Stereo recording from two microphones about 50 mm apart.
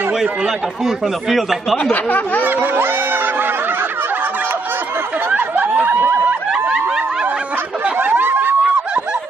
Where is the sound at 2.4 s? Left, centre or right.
Right.